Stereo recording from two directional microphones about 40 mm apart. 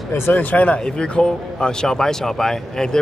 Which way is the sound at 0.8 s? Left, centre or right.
Left.